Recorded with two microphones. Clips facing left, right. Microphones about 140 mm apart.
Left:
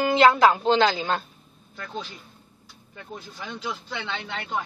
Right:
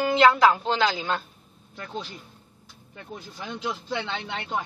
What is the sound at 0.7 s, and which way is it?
Speech, 30° left (ahead or behind).